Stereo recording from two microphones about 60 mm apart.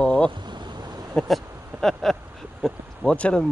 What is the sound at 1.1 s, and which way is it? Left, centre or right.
Speech, centre.